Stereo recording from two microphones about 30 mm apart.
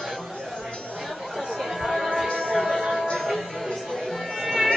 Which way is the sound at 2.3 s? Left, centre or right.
Left.